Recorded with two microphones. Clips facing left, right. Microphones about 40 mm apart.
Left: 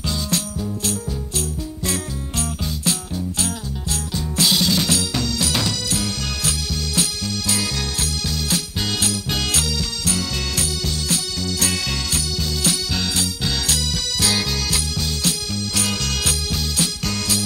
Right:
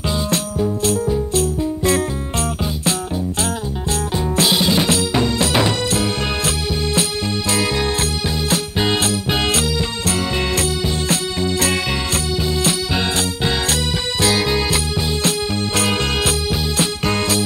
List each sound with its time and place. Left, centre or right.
0.3 s music: right
4.4 s music: right
8.5 s music: right
13.2 s music: right
15.2 s music: right